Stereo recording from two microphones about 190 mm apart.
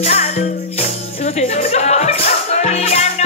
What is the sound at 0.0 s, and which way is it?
Music, 35° left (ahead or behind).